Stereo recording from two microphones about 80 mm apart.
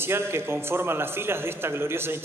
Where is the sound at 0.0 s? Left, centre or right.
Right.